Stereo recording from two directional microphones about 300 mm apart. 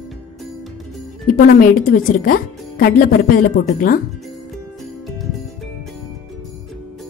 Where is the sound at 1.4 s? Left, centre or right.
Left.